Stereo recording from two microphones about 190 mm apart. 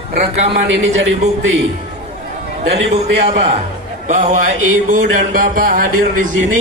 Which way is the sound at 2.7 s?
30° right (ahead or behind).